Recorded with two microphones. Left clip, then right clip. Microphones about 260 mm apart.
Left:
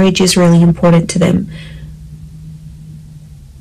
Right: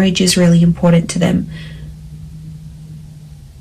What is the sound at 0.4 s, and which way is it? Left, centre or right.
Speech, left.